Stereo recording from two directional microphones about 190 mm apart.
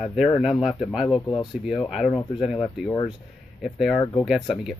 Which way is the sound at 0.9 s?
5° right (ahead or behind).